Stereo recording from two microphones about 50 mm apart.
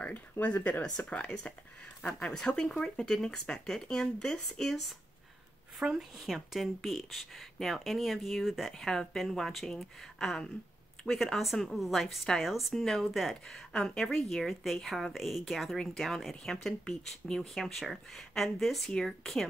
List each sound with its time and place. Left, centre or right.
0.0 s speech: left
0.8 s speech: left; by 4.9 s centre
5.8 s a woman's voice: centre
11.3 s a woman's voice: centre
12.7 s speech: centre
13.0 s a woman's voice: centre
16.8 s speech: centre
17.6 s a woman's voice: centre